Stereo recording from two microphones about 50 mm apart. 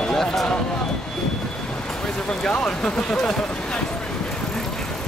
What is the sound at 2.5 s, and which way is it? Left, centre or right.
Speech, left.